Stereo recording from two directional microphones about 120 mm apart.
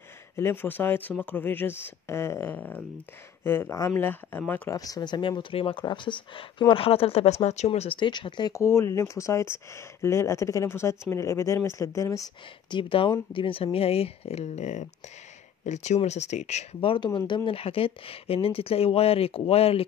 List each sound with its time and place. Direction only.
0.4 s speech: 20° left (ahead or behind)
4.7 s speech: 30° left (ahead or behind); by 8.0 s 60° left (ahead or behind)
8.0 s speech: 40° left (ahead or behind)
8.5 s speech: 20° left (ahead or behind)
12.7 s speech: 45° left (ahead or behind); by 16.6 s 70° left (ahead or behind)
16.8 s speech: 40° left (ahead or behind)